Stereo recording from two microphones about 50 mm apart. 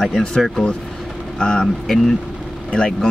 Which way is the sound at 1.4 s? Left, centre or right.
Centre.